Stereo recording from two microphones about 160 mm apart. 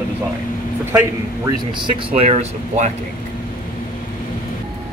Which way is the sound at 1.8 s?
40° right (ahead or behind).